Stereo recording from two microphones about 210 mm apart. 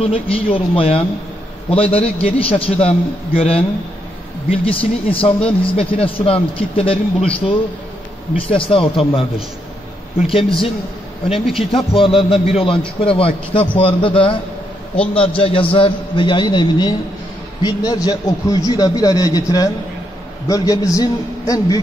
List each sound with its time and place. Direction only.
0.0 s a man's voice: 25° left (ahead or behind)
8.5 s a man's voice: 25° left (ahead or behind)
10.2 s a man's voice: 25° left (ahead or behind)
11.3 s speech: centre (ahead or behind)
11.7 s a man's voice: 25° left (ahead or behind)